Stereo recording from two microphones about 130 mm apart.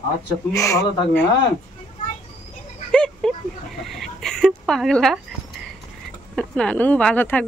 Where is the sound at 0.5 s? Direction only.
25° left (ahead or behind).